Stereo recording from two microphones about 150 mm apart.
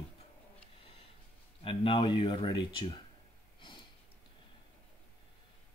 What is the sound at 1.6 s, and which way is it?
Speech, 35° left (ahead or behind).